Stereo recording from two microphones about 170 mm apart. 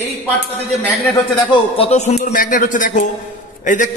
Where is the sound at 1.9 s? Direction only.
40° left (ahead or behind).